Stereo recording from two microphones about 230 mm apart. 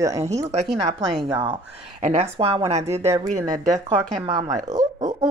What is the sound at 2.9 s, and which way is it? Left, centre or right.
A woman's voice, centre.